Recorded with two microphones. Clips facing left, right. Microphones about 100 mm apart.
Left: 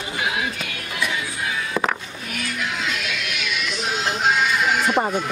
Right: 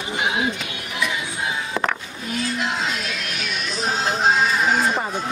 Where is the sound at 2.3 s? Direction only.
30° right (ahead or behind).